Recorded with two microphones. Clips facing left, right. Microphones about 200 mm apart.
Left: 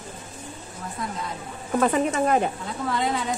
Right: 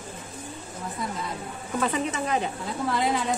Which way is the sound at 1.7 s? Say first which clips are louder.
Left 5 dB; 50° left (ahead or behind).